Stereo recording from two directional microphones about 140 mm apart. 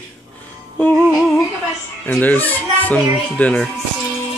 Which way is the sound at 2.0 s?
10° left (ahead or behind).